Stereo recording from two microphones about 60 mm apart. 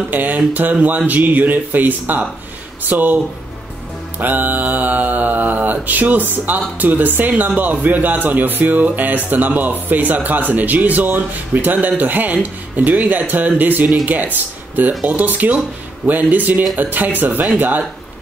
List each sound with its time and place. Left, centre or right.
0.1 s mantra: right
2.8 s speech: right
4.2 s mantra: right
14.0 s speech: right
15.0 s mantra: right
16.7 s speech: right
17.6 s mantra: right